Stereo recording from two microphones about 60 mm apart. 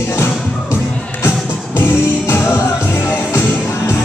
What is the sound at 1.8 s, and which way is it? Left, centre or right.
Music, left.